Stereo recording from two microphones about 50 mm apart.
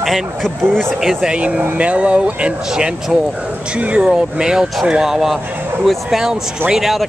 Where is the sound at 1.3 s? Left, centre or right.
Right.